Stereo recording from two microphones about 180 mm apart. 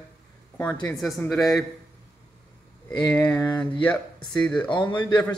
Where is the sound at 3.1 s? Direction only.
10° left (ahead or behind).